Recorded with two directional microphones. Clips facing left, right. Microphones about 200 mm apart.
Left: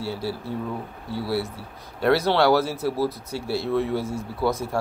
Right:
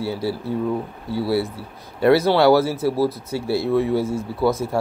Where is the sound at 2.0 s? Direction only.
10° right (ahead or behind).